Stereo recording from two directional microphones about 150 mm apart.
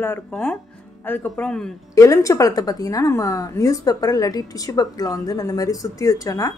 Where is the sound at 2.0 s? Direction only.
20° left (ahead or behind).